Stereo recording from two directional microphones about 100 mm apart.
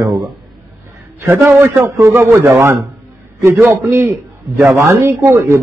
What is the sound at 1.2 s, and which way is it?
A man's voice, 25° right (ahead or behind).